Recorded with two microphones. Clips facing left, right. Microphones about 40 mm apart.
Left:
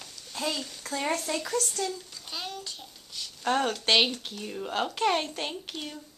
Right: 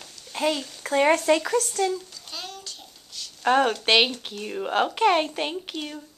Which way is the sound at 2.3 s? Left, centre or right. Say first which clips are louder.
Left 1 dB; centre.